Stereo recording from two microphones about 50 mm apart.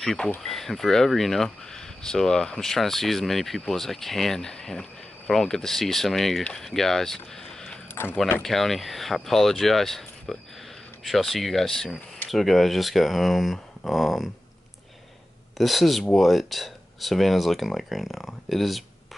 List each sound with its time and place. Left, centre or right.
0.4 s speech: centre
7.9 s speech: left
8.4 s speech: centre
15.5 s speech: centre